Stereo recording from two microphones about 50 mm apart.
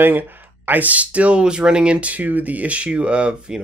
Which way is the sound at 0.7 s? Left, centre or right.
Right.